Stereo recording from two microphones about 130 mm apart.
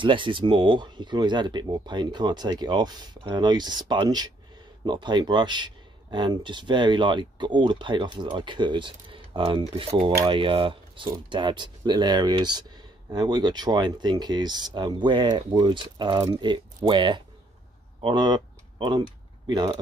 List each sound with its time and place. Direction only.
0.0 s speech: 40° right (ahead or behind)